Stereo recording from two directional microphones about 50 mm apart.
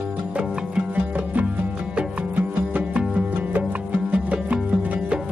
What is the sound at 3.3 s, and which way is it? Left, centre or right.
Music, right.